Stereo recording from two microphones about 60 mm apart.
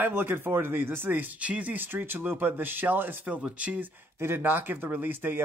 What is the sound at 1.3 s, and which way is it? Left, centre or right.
Speech, right.